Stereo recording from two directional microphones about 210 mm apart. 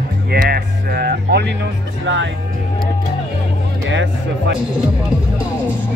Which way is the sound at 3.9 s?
60° right (ahead or behind).